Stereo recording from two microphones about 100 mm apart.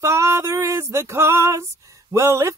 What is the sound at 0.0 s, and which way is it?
Female singing, 25° right (ahead or behind).